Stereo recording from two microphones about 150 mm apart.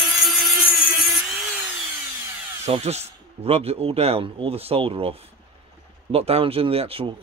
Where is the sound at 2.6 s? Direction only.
45° right (ahead or behind).